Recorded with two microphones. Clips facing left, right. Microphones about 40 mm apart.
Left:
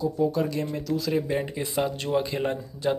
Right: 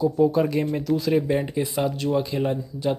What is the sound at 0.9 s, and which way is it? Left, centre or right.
Speech, centre.